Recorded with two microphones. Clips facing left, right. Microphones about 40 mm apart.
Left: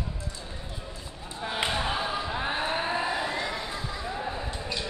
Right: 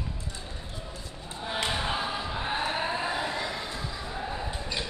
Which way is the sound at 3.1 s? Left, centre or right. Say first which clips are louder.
Left 1 dB; centre.